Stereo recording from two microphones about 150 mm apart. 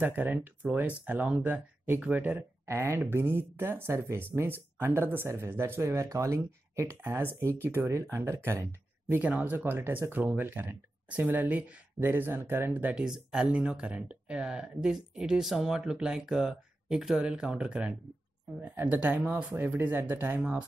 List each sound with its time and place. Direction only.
0.0 s speech: 10° right (ahead or behind)